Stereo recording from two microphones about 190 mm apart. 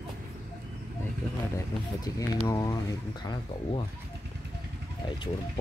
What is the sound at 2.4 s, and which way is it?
Speech, 15° left (ahead or behind).